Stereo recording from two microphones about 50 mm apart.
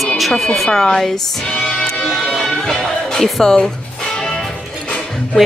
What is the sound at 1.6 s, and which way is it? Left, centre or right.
Music, centre.